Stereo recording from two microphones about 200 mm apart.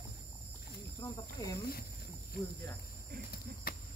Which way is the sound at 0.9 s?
15° left (ahead or behind).